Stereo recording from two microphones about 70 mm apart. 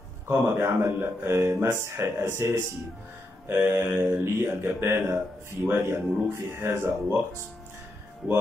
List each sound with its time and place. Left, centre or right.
0.3 s a man's voice: right